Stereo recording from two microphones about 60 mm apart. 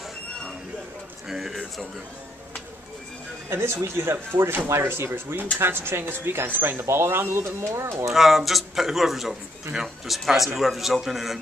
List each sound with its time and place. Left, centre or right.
1.3 s a man's voice: centre
3.4 s speech: right
8.1 s a man's voice: centre